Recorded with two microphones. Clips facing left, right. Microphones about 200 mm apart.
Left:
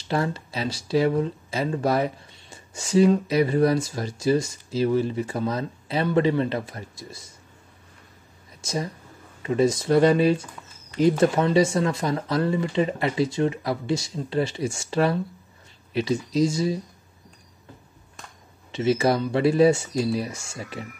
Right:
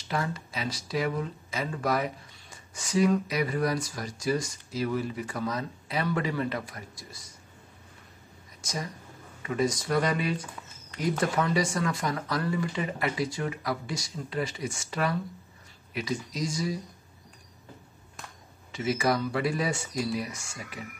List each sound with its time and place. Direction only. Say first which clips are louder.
0.1 s speech: left 6 dB; 30° left (ahead or behind)
9.4 s speech: left 7 dB; 30° left (ahead or behind)
18.7 s speech: left 6 dB; 25° left (ahead or behind)